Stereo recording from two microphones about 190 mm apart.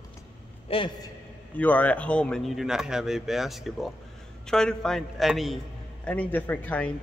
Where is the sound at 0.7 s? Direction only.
30° left (ahead or behind).